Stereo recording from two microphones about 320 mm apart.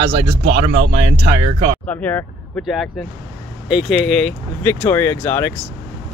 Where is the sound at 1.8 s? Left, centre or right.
Centre.